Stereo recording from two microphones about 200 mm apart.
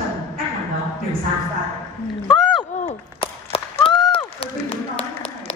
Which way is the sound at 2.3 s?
Centre (ahead or behind).